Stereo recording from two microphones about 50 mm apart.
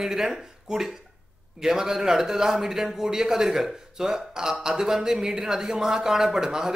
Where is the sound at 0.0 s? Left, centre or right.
Centre.